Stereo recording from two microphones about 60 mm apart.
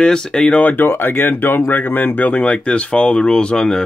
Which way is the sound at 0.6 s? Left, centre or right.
Left.